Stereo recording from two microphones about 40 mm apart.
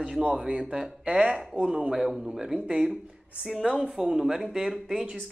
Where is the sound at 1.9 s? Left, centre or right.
Centre.